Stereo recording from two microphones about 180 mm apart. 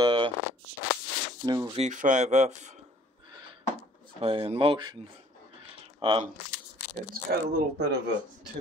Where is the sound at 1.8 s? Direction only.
45° right (ahead or behind).